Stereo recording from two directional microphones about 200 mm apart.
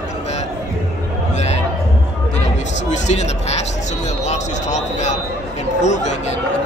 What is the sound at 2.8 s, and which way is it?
Speech, 35° left (ahead or behind).